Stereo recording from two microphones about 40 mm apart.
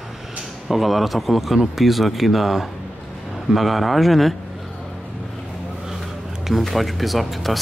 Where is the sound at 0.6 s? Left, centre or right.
Centre.